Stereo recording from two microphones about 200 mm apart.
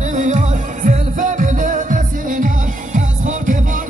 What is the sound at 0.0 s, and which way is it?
Music, 40° right (ahead or behind).